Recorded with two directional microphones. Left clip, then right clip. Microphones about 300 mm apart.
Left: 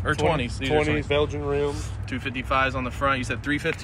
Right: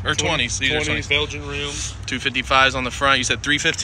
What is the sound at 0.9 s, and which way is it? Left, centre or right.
Speech, left.